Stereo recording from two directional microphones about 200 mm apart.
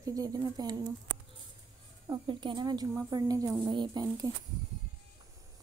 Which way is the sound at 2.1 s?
20° right (ahead or behind).